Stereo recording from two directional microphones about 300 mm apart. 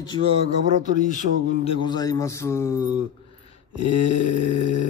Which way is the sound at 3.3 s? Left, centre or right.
Centre.